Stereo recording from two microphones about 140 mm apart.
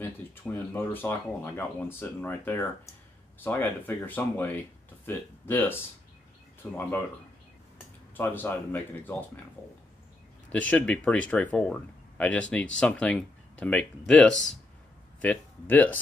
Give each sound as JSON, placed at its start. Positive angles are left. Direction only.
{"t": 0.0, "sound": "speech", "side_deg": 15}
{"t": 8.2, "sound": "speech", "side_deg": 15}
{"t": 10.5, "sound": "speech", "side_deg": 10}